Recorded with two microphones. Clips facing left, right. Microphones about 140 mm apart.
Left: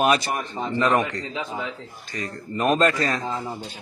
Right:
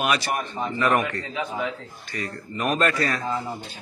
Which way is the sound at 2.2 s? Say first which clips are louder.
Left 3 dB; 25° left (ahead or behind).